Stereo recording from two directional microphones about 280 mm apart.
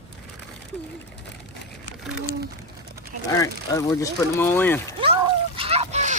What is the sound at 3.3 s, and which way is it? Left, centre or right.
Speech, centre.